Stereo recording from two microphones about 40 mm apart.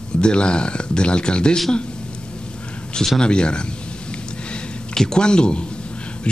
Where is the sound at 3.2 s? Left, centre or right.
Left.